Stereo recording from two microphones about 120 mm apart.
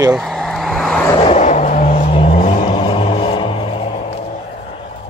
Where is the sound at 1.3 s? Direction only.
70° left (ahead or behind); by 2.4 s 55° left (ahead or behind).